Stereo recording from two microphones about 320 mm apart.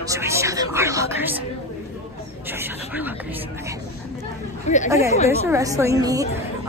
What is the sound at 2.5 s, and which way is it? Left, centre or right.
Speech, centre.